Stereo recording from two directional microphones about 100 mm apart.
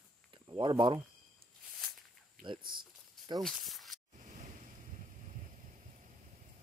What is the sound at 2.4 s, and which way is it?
Speech, 50° right (ahead or behind).